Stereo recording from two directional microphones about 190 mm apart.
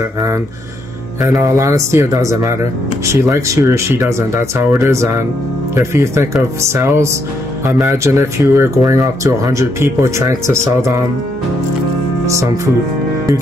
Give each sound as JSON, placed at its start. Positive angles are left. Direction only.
{"t": 1.3, "sound": "speech", "side_deg": -15}